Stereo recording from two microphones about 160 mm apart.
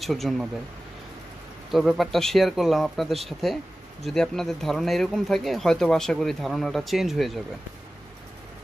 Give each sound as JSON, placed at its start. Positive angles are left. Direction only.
{"t": 0.0, "sound": "speech", "side_deg": 0}
{"t": 1.7, "sound": "speech", "side_deg": 0}